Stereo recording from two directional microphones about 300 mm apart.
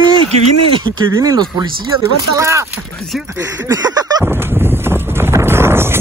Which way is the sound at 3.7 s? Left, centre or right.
Centre.